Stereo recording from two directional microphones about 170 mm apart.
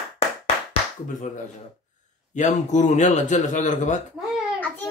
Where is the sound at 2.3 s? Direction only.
45° left (ahead or behind).